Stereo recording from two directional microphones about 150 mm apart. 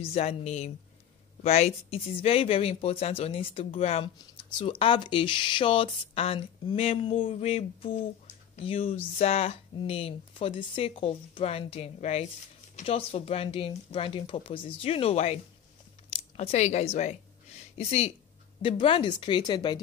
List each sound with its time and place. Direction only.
0.0 s a woman's voice: 45° left (ahead or behind)
16.3 s a woman's voice: 50° left (ahead or behind); by 19.8 s 30° left (ahead or behind)